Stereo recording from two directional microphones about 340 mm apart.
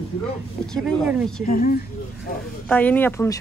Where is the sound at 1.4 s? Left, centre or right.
Left.